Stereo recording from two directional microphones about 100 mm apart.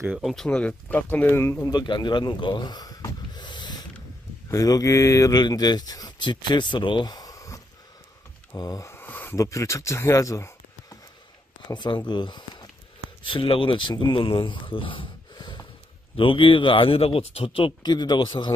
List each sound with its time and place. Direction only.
0.2 s speech: 5° left (ahead or behind); by 1.7 s 25° left (ahead or behind)
1.7 s snort: 45° left (ahead or behind)
4.5 s speech: 35° left (ahead or behind)
8.5 s wheeze: 35° left (ahead or behind); by 9.4 s 20° left (ahead or behind)
9.4 s speech: 30° left (ahead or behind)
11.6 s speech: 50° left (ahead or behind)
13.2 s speech: 60° left (ahead or behind)
15.3 s snort: 45° left (ahead or behind)
16.2 s speech: 60° left (ahead or behind)
17.8 s speech: 45° left (ahead or behind)